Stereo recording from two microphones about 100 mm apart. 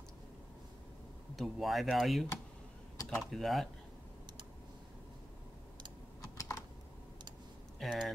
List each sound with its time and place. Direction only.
1.3 s speech: centre (ahead or behind)
6.3 s typing: 35° left (ahead or behind)
7.8 s speech: centre (ahead or behind)